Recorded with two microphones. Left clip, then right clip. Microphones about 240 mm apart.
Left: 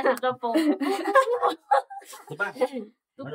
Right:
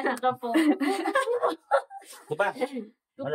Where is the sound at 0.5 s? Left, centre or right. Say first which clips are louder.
Right 1 dB; centre.